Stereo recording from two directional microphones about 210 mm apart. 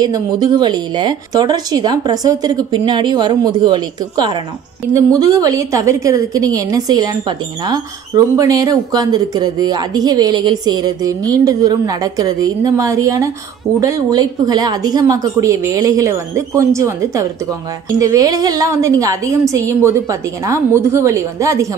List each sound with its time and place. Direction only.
0.0 s a woman's voice: 20° right (ahead or behind)